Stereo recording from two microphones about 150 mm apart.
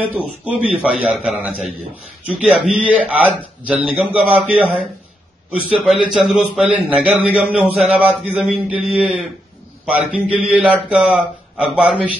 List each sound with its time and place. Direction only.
0.1 s a man's voice: 10° right (ahead or behind)
5.7 s a man's voice: 5° right (ahead or behind)